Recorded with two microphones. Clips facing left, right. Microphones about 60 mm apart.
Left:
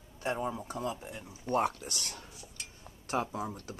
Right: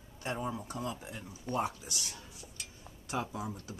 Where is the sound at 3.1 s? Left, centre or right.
Left.